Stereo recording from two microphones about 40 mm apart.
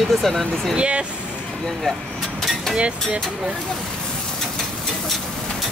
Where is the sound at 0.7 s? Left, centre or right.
Right.